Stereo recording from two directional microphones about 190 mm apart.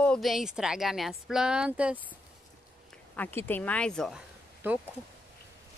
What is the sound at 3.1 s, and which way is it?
Speech, 10° left (ahead or behind).